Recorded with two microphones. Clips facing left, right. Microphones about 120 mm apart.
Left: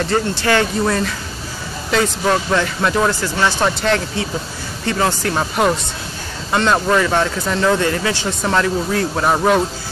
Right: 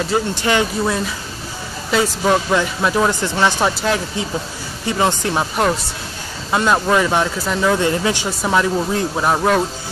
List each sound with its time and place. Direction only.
0.0 s speech: 10° right (ahead or behind)
3.1 s speech: 20° right (ahead or behind)
5.4 s speech: 5° left (ahead or behind)